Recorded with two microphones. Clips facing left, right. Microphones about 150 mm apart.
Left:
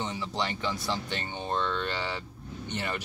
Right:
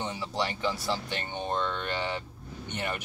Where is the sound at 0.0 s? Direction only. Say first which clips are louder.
Even; 10° right (ahead or behind).